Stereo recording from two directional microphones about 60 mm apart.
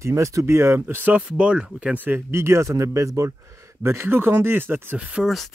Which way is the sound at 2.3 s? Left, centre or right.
Right.